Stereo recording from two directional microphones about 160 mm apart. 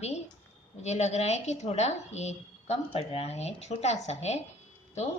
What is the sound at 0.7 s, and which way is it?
A woman's voice, 45° left (ahead or behind).